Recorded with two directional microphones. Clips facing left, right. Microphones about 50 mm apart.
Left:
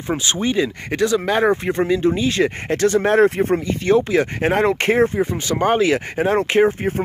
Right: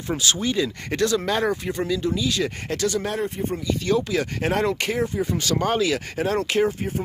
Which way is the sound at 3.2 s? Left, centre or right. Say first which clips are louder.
Left 11 dB; left.